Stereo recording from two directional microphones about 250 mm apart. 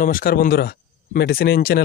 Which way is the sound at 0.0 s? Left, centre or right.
Left.